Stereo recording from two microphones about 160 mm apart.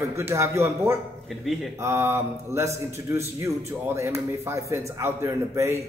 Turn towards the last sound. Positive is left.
turn(degrees=-20)  # may be behind; listen again after turning